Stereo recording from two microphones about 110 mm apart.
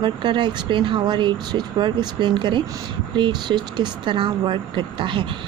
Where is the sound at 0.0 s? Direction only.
45° right (ahead or behind).